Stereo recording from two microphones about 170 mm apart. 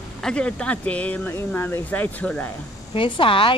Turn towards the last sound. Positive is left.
turn(degrees=30)  # may be behind; listen again after turning